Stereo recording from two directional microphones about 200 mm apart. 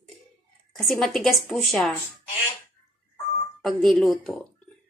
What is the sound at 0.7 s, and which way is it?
A woman's voice, centre (ahead or behind).